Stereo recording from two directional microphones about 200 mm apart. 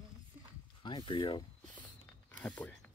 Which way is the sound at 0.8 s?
25° left (ahead or behind).